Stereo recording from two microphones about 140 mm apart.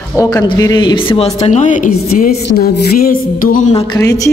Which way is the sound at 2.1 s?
90° left.